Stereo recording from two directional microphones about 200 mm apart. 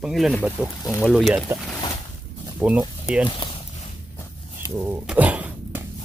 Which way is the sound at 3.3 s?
25° left (ahead or behind).